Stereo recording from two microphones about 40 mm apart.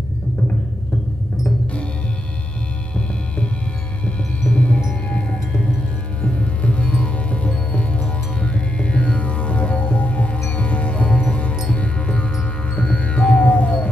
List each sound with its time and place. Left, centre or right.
4.5 s music: left
6.2 s music: left